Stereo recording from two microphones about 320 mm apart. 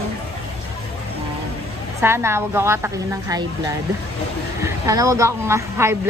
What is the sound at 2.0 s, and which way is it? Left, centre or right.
A woman's voice, centre.